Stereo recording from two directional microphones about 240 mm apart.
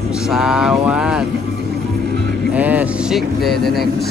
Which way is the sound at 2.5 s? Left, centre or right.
Centre.